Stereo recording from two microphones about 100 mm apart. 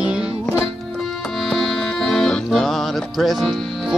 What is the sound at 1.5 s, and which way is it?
Music, 5° left (ahead or behind).